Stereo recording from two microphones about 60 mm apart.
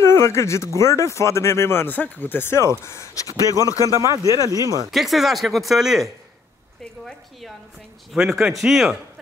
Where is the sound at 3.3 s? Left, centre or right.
Right.